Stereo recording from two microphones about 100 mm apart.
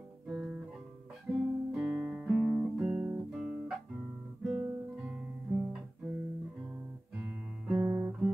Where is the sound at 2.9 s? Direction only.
20° right (ahead or behind).